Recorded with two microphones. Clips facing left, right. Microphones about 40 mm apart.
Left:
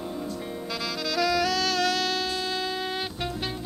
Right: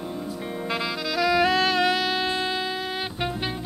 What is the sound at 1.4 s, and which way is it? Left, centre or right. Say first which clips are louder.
Music: right 4 dB; right.